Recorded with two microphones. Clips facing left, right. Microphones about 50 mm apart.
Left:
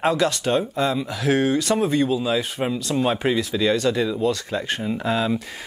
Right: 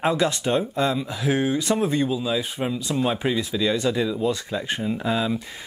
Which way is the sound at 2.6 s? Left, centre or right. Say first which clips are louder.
Left 2 dB; centre.